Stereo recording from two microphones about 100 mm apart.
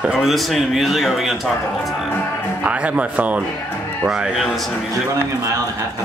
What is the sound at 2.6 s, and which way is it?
A man's voice, 15° right (ahead or behind).